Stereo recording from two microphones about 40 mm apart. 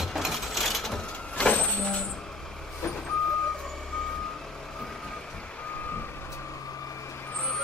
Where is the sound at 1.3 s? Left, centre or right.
Left.